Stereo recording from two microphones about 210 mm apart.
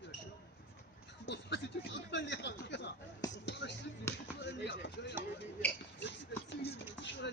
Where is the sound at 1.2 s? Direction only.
55° left (ahead or behind).